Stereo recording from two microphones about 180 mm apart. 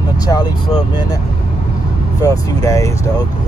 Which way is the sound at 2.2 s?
20° left (ahead or behind).